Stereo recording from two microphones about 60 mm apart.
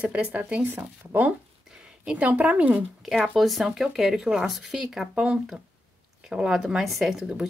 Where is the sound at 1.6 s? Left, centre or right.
Centre.